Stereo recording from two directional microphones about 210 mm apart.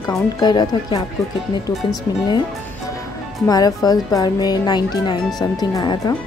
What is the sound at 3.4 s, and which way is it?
Speech, 15° left (ahead or behind).